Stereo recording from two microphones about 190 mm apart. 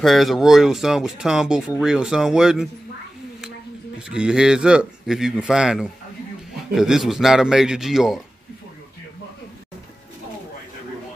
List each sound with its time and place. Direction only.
0.0 s speech: centre (ahead or behind)
4.1 s speech: 5° right (ahead or behind)